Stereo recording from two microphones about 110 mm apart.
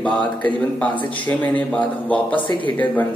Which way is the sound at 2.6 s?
15° left (ahead or behind).